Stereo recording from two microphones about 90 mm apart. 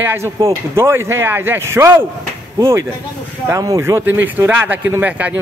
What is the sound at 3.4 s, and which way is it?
Speech, 35° right (ahead or behind).